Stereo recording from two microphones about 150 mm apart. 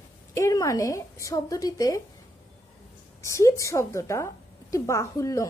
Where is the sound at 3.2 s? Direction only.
20° left (ahead or behind).